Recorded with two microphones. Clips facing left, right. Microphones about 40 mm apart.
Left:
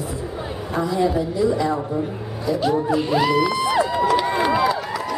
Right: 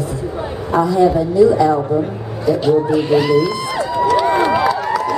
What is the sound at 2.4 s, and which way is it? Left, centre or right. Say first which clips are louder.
Speech: right 6 dB; right.